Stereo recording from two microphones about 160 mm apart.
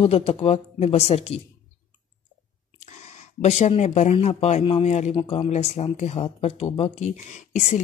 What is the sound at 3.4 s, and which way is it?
Speech, 45° left (ahead or behind).